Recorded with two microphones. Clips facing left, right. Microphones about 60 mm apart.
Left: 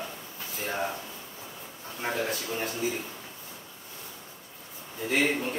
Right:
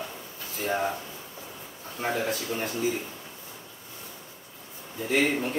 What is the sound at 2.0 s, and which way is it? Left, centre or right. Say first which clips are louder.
Speech: right 2 dB; centre.